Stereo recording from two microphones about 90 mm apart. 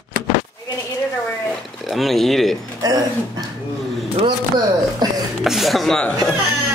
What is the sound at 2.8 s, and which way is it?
Speech, 45° right (ahead or behind).